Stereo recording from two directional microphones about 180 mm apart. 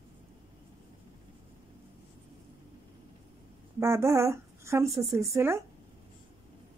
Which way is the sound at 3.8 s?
15° right (ahead or behind).